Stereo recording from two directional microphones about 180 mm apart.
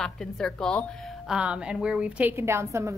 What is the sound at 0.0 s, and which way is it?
Speech, 5° left (ahead or behind).